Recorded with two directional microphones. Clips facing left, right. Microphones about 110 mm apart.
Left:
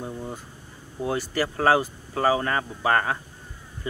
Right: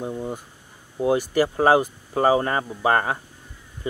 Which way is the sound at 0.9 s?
15° right (ahead or behind).